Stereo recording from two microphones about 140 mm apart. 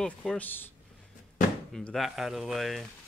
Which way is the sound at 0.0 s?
5° left (ahead or behind).